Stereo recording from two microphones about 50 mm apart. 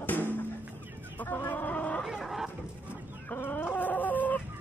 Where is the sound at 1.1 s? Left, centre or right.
Left.